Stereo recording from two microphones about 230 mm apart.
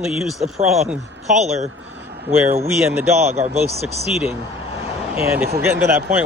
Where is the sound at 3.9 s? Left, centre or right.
Left.